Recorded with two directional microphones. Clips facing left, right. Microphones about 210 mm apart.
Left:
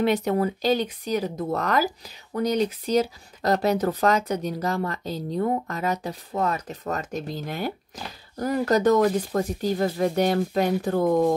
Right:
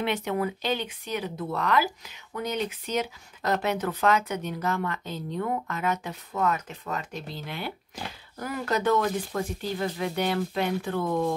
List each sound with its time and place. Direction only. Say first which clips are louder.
0.0 s speech: left 6 dB; 40° left (ahead or behind)